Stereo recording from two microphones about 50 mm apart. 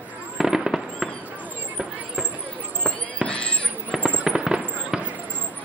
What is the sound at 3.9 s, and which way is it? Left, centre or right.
Fireworks, right.